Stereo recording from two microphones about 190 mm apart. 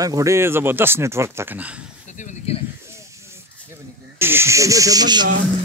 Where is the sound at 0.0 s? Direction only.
15° right (ahead or behind).